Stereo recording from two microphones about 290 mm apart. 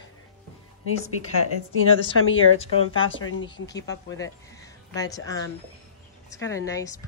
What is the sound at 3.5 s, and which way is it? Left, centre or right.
Speech, centre.